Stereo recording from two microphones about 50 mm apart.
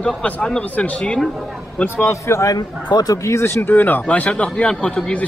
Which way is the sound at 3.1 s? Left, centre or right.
Left.